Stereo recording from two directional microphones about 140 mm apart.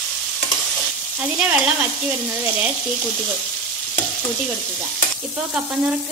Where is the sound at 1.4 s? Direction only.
10° right (ahead or behind).